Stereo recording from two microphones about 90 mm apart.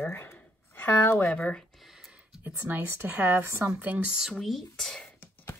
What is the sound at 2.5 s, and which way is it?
Speech, 20° right (ahead or behind).